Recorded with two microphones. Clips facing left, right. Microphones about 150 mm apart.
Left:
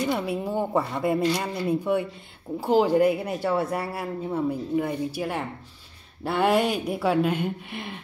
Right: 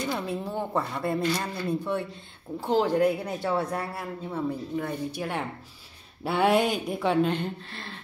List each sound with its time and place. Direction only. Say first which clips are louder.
0.1 s speech: left 4 dB; 10° left (ahead or behind)